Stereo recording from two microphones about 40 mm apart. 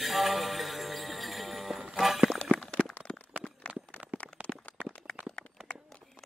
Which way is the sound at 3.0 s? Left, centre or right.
Left.